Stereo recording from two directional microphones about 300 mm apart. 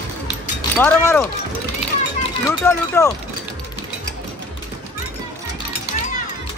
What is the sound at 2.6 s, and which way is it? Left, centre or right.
Speech, centre.